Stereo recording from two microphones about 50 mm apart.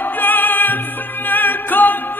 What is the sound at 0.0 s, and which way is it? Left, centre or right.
Music, left.